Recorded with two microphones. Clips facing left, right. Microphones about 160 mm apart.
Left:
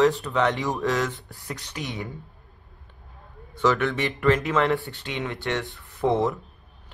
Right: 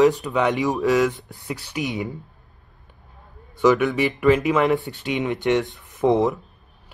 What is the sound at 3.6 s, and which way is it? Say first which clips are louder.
Speech: right 5 dB; 15° right (ahead or behind).